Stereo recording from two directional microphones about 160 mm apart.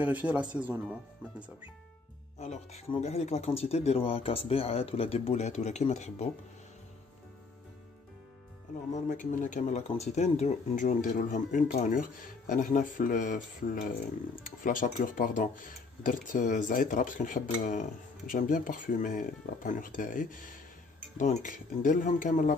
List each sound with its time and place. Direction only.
0.0 s speech: 10° right (ahead or behind)
2.4 s speech: 45° left (ahead or behind)
8.9 s speech: 55° left (ahead or behind)